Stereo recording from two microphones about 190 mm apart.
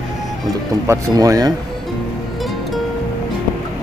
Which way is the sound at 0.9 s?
20° right (ahead or behind).